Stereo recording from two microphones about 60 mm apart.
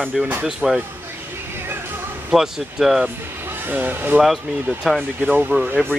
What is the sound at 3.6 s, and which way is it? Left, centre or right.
Speech, right.